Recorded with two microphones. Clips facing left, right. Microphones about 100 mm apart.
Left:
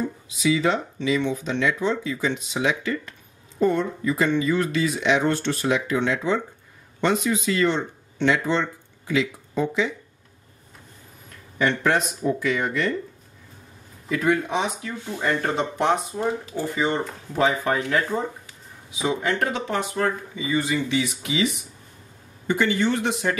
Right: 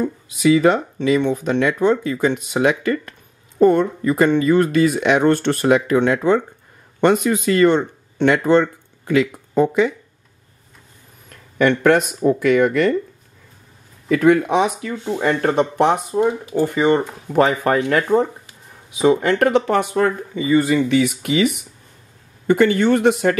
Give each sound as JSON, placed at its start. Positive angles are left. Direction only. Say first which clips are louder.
{"t": 0.3, "sound": "speech", "louder": "right 8 dB", "side_deg": -55}
{"t": 11.5, "sound": "speech", "louder": "right 7 dB", "side_deg": -60}
{"t": 14.1, "sound": "speech", "louder": "right 8 dB", "side_deg": -65}